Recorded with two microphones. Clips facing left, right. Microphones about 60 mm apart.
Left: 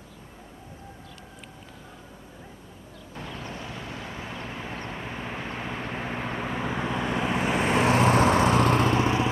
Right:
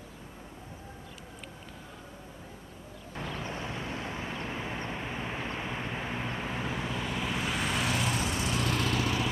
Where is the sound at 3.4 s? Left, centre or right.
Right.